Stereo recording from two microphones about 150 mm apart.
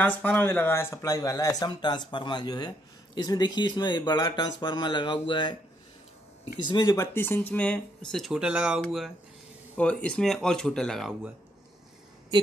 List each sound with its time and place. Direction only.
0.0 s speech: 10° left (ahead or behind)